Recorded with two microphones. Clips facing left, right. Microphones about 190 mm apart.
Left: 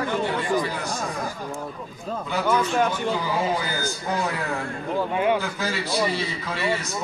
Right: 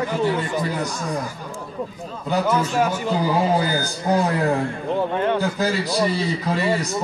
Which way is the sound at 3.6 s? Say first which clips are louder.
Right 5 dB; 35° right (ahead or behind).